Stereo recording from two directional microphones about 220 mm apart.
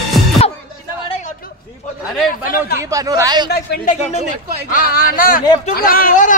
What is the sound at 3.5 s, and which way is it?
Speech, 45° left (ahead or behind).